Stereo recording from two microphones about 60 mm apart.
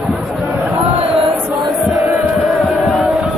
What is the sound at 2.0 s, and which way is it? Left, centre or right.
Crowd, right.